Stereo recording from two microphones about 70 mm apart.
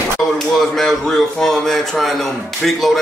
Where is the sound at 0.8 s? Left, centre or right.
Centre.